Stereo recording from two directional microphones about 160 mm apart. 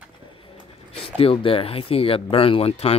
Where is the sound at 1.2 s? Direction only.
35° left (ahead or behind).